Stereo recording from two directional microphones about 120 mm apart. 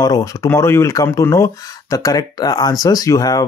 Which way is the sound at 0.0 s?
30° left (ahead or behind).